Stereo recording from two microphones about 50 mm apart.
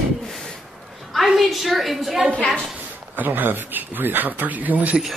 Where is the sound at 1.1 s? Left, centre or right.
Centre.